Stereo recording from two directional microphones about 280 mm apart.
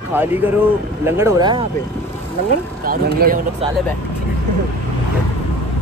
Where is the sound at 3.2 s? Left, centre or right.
Right.